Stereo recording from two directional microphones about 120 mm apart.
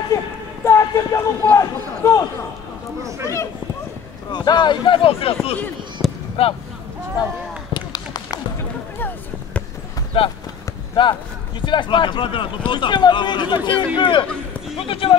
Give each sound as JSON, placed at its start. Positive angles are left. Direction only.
{"t": 0.7, "sound": "run", "side_deg": 25}
{"t": 3.0, "sound": "speech", "side_deg": -25}
{"t": 4.3, "sound": "speech", "side_deg": 35}
{"t": 6.0, "sound": "basketball bounce", "side_deg": 0}
{"t": 6.4, "sound": "speech", "side_deg": 55}
{"t": 7.7, "sound": "run", "side_deg": 35}
{"t": 8.9, "sound": "basketball bounce", "side_deg": 15}
{"t": 10.1, "sound": "speech", "side_deg": 45}